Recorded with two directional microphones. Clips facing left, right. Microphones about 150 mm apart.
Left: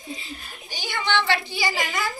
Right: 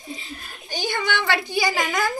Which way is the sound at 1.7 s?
45° right (ahead or behind).